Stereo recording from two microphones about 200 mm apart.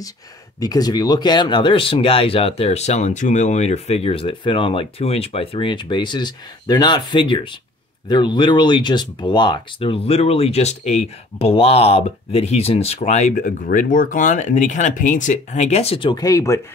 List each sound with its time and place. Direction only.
0.6 s speech: 20° left (ahead or behind)